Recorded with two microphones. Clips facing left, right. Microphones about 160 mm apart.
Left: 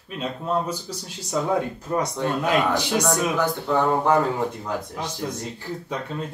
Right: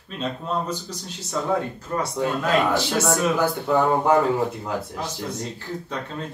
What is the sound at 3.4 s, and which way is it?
Speech, 10° right (ahead or behind).